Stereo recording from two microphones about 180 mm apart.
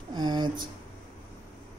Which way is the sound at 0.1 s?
25° right (ahead or behind).